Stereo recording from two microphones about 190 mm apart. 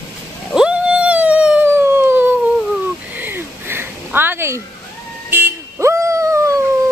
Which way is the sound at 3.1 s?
10° right (ahead or behind).